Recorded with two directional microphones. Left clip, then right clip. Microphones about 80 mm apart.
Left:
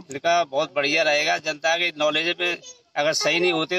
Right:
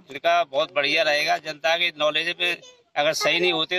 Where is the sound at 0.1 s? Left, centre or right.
Centre.